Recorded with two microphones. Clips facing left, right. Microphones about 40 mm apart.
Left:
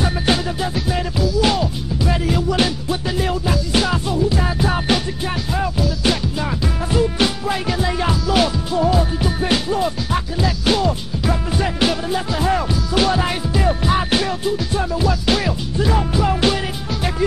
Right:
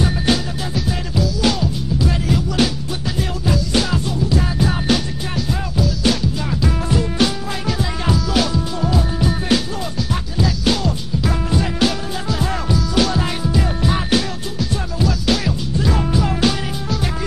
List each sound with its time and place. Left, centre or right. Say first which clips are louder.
0.0 s music: even; centre